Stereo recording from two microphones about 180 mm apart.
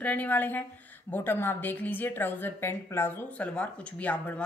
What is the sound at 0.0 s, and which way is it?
A woman's voice, 10° left (ahead or behind).